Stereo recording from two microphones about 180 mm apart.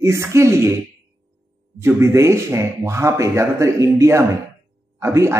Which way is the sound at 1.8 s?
15° right (ahead or behind).